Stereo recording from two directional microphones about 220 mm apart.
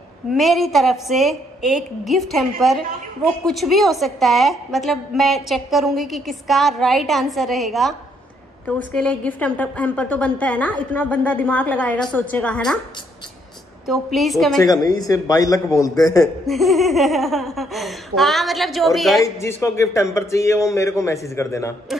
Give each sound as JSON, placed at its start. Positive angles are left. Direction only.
{"t": 0.3, "sound": "a woman's voice", "side_deg": 0}
{"t": 13.8, "sound": "a woman's voice", "side_deg": 0}
{"t": 14.6, "sound": "speech", "side_deg": 15}
{"t": 16.4, "sound": "a woman's voice", "side_deg": 0}
{"t": 19.2, "sound": "speech", "side_deg": 15}